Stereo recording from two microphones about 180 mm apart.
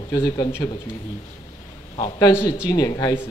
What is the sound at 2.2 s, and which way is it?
A man's voice, 20° left (ahead or behind).